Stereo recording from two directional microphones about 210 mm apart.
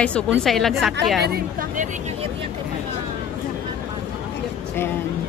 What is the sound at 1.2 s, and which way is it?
Speech, 45° right (ahead or behind).